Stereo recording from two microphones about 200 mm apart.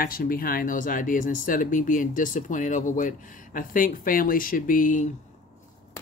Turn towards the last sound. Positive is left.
turn(degrees=40)  # may be behind; listen again after turning